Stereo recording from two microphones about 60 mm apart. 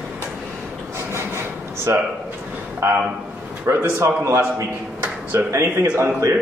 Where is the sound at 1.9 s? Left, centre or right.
Right.